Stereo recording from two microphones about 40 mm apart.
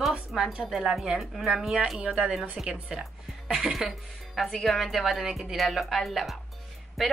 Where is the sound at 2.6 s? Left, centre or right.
Centre.